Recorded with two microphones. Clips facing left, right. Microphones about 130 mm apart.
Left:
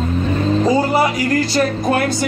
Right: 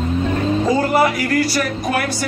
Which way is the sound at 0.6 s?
15° left (ahead or behind).